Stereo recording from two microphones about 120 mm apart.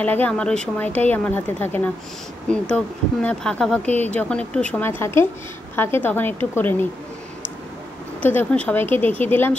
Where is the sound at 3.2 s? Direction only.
10° left (ahead or behind).